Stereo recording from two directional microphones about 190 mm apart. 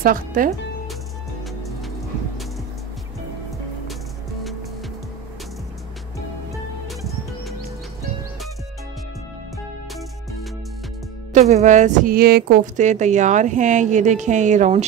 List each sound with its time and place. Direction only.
0.0 s speech: 45° right (ahead or behind)
11.3 s a woman's voice: 40° right (ahead or behind)